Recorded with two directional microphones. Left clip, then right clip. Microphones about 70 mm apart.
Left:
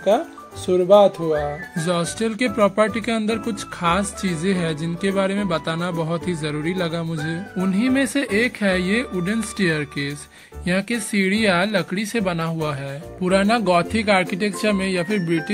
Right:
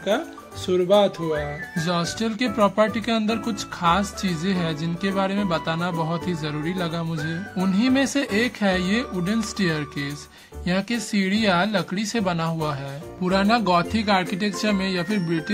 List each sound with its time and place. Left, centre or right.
0.7 s speech: left
7.7 s speech: centre; by 15.5 s left